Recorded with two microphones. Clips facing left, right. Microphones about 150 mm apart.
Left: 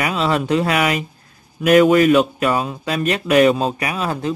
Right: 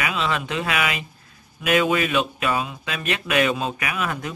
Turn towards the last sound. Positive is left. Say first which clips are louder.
# left 5 dB
turn(degrees=30)  # may be behind; listen again after turning